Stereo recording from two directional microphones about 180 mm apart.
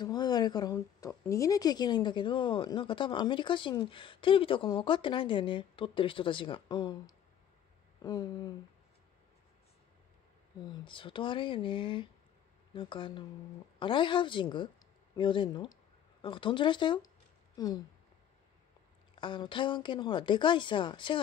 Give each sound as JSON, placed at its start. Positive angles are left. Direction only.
{"t": 0.0, "sound": "a woman's voice", "side_deg": 20}
{"t": 10.6, "sound": "a woman's voice", "side_deg": 25}
{"t": 19.1, "sound": "a woman's voice", "side_deg": 25}